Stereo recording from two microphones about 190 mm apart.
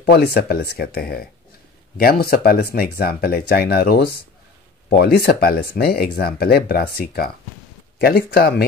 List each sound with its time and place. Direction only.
0.0 s speech: 60° left (ahead or behind)
8.0 s speech: 55° left (ahead or behind)